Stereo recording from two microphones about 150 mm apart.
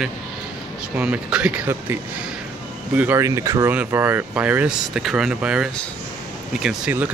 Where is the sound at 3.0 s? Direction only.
15° right (ahead or behind).